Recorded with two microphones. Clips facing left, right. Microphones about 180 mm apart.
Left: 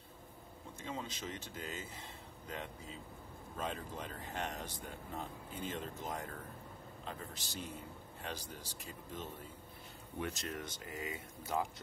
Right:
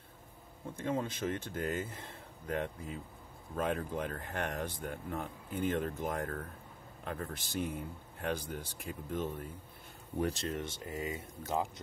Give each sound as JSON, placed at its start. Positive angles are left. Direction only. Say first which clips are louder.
{"t": 0.7, "sound": "speech", "louder": "right 9 dB", "side_deg": -55}
{"t": 10.1, "sound": "speech", "louder": "right 7 dB", "side_deg": -35}